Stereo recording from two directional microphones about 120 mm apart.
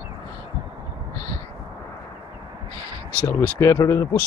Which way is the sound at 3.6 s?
25° left (ahead or behind).